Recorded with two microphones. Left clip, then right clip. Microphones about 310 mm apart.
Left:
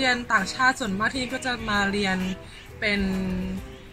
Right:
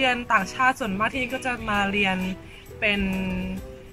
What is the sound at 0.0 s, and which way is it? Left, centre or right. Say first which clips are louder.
A woman's voice: right 1 dB; centre.